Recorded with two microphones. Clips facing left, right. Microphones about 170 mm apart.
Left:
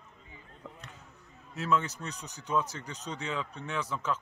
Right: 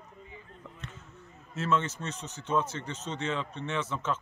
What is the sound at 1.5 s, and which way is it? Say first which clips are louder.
Speech: right 1 dB; centre (ahead or behind).